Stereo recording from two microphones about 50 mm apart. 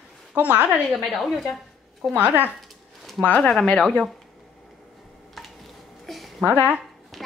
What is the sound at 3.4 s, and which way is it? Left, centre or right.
Speech, centre.